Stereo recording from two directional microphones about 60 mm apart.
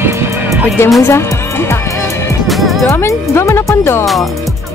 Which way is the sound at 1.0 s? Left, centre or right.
Left.